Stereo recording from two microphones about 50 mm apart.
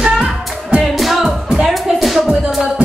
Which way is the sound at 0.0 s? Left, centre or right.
Centre.